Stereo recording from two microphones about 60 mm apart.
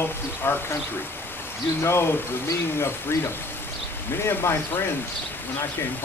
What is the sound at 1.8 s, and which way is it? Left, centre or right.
Speech, left.